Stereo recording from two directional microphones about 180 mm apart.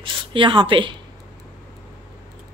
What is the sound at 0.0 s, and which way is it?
Speech, 30° right (ahead or behind).